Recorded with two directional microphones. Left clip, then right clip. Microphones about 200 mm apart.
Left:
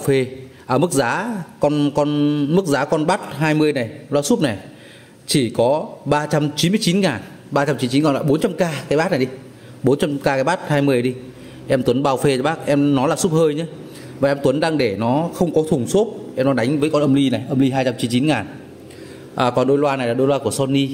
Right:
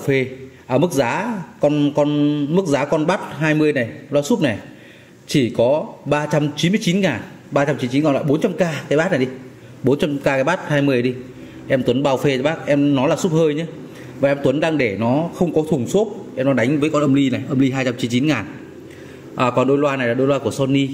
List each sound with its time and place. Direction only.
0.0 s a man's voice: 15° left (ahead or behind)